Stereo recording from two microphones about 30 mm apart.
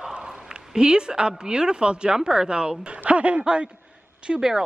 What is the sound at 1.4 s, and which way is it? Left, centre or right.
A woman's voice, right.